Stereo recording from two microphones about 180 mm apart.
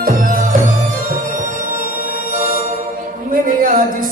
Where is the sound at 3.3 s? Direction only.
50° right (ahead or behind).